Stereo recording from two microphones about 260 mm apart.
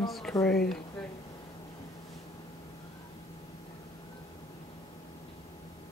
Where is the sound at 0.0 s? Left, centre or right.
Centre.